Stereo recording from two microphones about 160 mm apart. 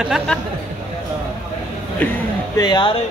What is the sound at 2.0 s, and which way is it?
Speech, 10° left (ahead or behind).